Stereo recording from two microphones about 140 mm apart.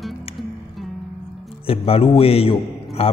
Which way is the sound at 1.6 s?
45° left (ahead or behind).